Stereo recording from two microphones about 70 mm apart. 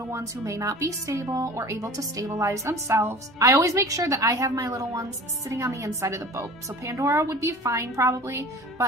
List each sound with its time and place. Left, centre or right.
0.1 s speech: right